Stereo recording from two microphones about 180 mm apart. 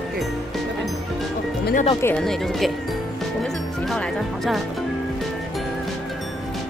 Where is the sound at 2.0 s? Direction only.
10° left (ahead or behind).